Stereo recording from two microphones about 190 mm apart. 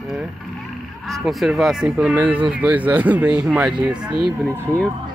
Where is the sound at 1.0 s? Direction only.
Centre (ahead or behind).